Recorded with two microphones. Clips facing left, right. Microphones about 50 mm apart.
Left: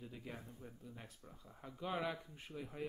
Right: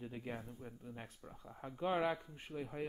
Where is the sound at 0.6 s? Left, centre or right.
Right.